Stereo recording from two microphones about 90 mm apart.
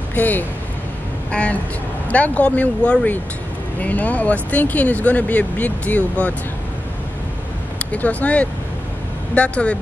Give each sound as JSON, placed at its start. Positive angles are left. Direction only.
{"t": 0.1, "sound": "speech", "side_deg": 20}
{"t": 7.8, "sound": "speech", "side_deg": 15}